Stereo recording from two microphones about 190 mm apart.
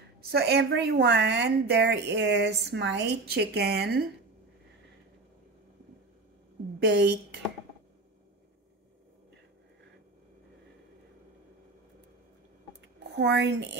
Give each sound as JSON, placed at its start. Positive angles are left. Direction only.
{"t": 0.3, "sound": "a woman's voice", "side_deg": -60}
{"t": 6.8, "sound": "a woman's voice", "side_deg": -65}
{"t": 13.1, "sound": "a woman's voice", "side_deg": -65}